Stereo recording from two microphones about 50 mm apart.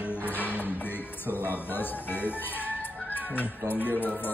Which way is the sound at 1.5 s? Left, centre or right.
Left.